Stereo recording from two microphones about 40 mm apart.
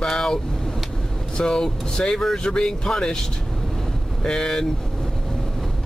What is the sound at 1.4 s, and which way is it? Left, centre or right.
Speech, centre.